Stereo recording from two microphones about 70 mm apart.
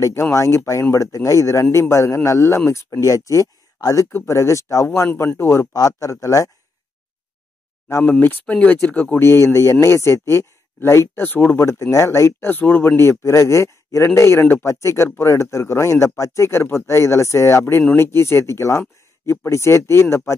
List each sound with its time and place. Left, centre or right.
0.0 s speech: left
4.8 s speech: left
5.7 s speech: left
8.0 s speech: left
9.2 s speech: left
11.6 s speech: left
12.4 s speech: left